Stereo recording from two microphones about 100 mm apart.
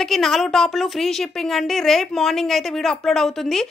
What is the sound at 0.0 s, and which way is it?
A woman's voice, centre (ahead or behind).